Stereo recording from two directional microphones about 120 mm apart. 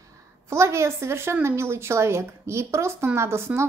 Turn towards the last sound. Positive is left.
turn(degrees=-20)  # may be behind; listen again after turning